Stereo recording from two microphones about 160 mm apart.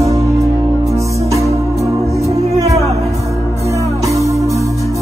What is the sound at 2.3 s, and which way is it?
Music, 40° right (ahead or behind).